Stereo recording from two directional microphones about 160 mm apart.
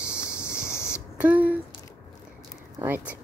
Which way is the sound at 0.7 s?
15° left (ahead or behind).